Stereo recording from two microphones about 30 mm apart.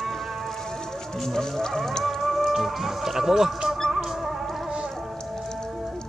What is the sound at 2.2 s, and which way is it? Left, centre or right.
Speech, centre.